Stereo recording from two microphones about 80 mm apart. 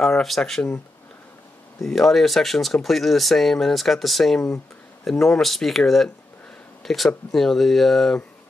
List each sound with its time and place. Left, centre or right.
0.0 s speech: centre
1.8 s speech: centre